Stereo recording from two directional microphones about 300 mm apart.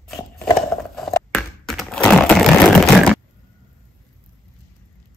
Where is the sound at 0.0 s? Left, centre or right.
Centre.